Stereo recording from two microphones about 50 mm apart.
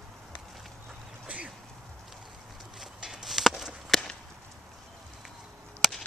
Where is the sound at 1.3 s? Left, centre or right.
Right.